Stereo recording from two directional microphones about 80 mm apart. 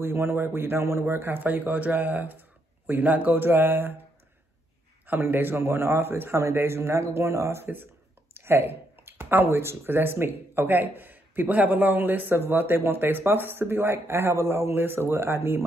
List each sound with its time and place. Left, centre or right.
0.0 s speech: right
5.0 s speech: right